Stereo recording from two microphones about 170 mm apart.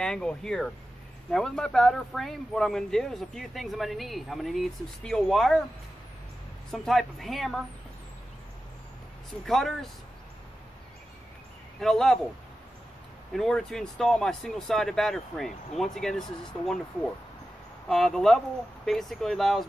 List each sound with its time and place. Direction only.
0.0 s speech: 5° left (ahead or behind)
6.7 s speech: centre (ahead or behind)
9.5 s speech: centre (ahead or behind)
11.8 s speech: 5° left (ahead or behind)
13.3 s speech: centre (ahead or behind)
17.8 s speech: centre (ahead or behind)